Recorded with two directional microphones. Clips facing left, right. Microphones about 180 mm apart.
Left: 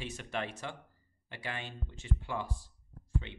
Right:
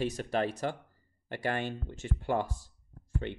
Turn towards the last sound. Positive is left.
turn(degrees=-55)  # may be behind; listen again after turning